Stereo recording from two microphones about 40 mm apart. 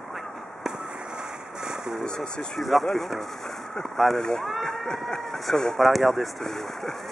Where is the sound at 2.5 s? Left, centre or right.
Centre.